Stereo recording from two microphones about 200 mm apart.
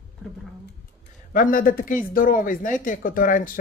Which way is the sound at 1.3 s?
45° left (ahead or behind).